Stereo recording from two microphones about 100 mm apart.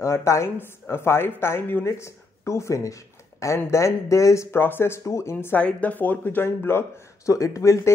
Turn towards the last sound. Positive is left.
turn(degrees=30)  # may be behind; listen again after turning